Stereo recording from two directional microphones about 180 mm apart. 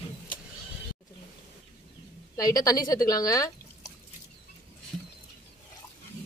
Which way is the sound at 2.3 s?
20° left (ahead or behind).